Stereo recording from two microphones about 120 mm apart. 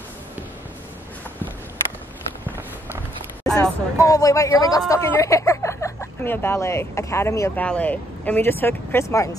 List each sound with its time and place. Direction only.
3.4 s a sound: 5° left (ahead or behind)
4.0 s speech: 30° left (ahead or behind)
7.6 s speech: 10° left (ahead or behind)